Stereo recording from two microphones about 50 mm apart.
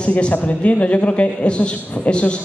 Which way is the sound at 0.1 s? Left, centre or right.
Left.